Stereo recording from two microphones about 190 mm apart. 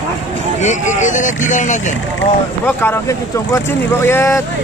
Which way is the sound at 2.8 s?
15° left (ahead or behind).